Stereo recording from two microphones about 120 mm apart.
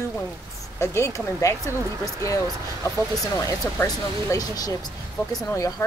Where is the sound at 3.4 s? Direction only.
30° left (ahead or behind).